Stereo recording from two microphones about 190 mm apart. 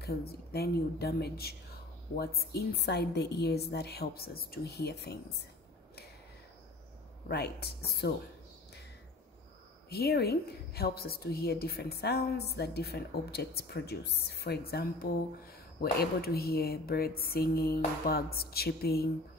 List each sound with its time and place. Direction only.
0.0 s a woman's voice: 55° left (ahead or behind)
7.2 s a woman's voice: 60° left (ahead or behind)
9.8 s a woman's voice: 55° left (ahead or behind)